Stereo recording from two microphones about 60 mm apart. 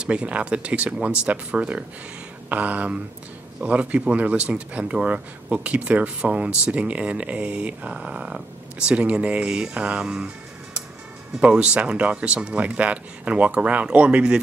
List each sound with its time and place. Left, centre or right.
0.0 s speech: centre